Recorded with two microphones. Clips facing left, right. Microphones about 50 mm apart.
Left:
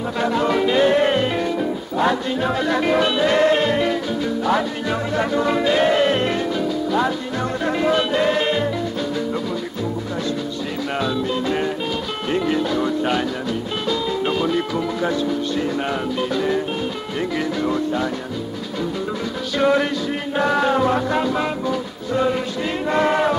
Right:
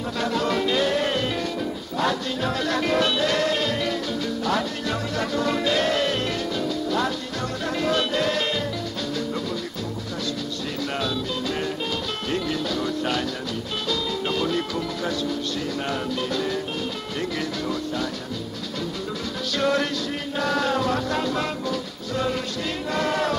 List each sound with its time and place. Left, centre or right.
0.2 s music: centre
11.0 s music: centre
17.6 s music: left
19.6 s music: centre